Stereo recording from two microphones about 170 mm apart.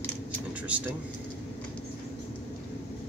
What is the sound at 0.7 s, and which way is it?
Speech, 10° right (ahead or behind).